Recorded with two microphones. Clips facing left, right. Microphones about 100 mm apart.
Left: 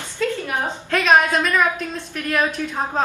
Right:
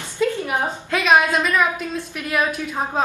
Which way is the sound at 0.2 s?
15° right (ahead or behind).